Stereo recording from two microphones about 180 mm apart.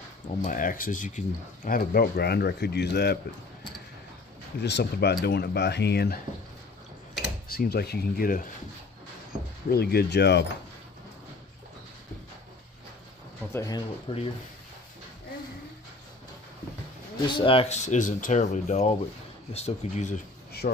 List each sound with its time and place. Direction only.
0.4 s speech: 50° left (ahead or behind); by 3.2 s 65° left (ahead or behind)
4.6 s speech: 70° left (ahead or behind)
7.4 s speech: 60° left (ahead or behind)
9.7 s speech: 60° left (ahead or behind)
13.5 s speech: 20° left (ahead or behind)
17.3 s speech: 30° left (ahead or behind); by 20.8 s 45° left (ahead or behind)